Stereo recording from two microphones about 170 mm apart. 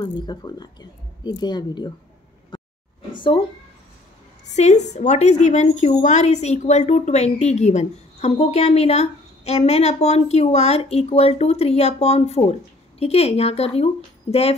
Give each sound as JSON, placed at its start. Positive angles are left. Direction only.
{"t": 0.0, "sound": "speech", "side_deg": 25}
{"t": 2.5, "sound": "a sound", "side_deg": 25}
{"t": 4.5, "sound": "a woman's voice", "side_deg": 40}
{"t": 14.3, "sound": "speech", "side_deg": 25}